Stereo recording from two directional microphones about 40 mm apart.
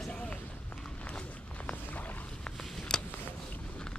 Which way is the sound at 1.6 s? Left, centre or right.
Left.